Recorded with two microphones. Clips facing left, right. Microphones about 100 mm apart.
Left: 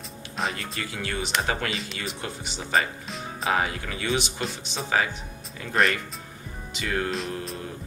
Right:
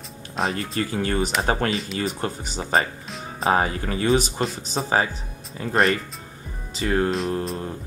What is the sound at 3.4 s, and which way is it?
Speech, 35° right (ahead or behind).